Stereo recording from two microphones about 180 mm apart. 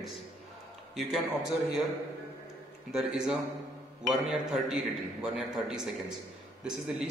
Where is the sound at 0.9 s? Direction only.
Centre (ahead or behind).